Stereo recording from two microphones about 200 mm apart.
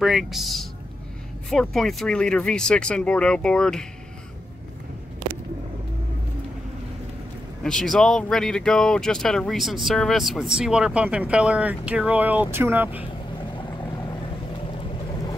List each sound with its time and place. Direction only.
0.0 s speech: centre (ahead or behind)
7.6 s speech: centre (ahead or behind)
13.6 s boat: 20° left (ahead or behind)